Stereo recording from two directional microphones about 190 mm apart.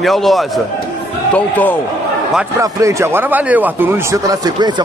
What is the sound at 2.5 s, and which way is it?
Speech, 15° right (ahead or behind).